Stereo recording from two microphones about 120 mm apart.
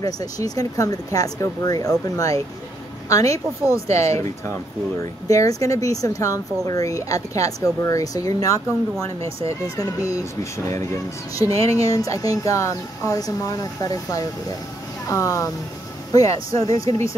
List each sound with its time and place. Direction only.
0.0 s speech: 30° left (ahead or behind)
5.3 s speech: 30° left (ahead or behind)